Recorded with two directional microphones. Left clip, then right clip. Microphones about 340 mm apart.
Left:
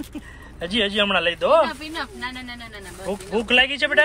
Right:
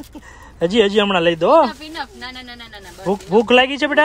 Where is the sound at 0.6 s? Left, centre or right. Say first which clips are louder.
Right 6 dB; right.